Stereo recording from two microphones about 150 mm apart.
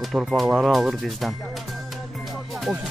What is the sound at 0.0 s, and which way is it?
Speech, centre (ahead or behind).